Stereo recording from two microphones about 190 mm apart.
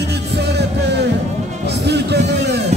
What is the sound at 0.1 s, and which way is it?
Music, 60° right (ahead or behind).